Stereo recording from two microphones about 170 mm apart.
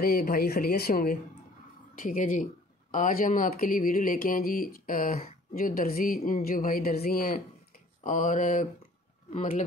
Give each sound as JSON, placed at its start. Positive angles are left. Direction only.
{"t": 0.0, "sound": "speech", "side_deg": 60}
{"t": 9.3, "sound": "speech", "side_deg": 40}